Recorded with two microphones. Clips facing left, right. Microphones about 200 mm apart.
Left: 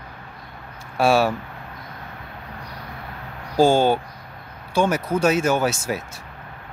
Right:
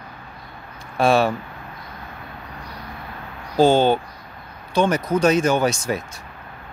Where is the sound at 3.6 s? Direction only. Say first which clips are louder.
Right 1 dB; 10° left (ahead or behind).